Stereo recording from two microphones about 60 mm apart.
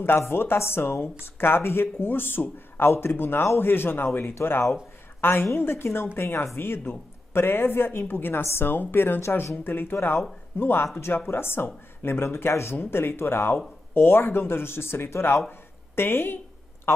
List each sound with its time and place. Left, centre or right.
0.2 s speech: left